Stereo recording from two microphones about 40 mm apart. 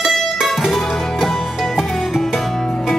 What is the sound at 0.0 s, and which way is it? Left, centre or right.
Music, centre.